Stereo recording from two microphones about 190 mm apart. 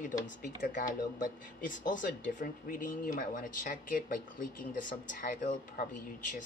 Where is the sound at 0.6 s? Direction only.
45° left (ahead or behind).